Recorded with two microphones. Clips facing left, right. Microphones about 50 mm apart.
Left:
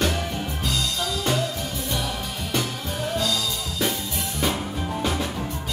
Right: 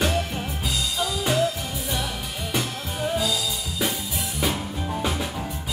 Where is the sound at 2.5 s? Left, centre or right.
Centre.